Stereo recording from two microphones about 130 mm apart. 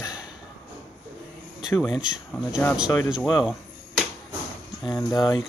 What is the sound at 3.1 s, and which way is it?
Arrow, 5° right (ahead or behind).